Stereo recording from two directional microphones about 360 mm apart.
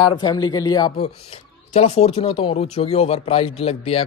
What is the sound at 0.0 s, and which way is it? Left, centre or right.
Speech, centre.